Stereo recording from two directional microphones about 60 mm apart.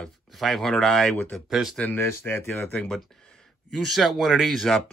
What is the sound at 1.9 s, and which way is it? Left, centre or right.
Speech, left.